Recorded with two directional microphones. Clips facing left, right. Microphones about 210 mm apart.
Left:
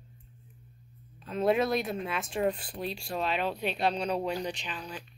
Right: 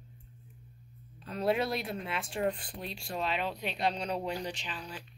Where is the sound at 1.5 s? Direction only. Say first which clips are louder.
Left 5 dB; 30° right (ahead or behind).